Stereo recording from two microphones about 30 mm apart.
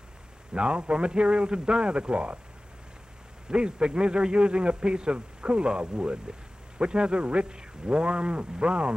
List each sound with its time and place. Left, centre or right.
0.6 s a man's voice: right
3.4 s a man's voice: right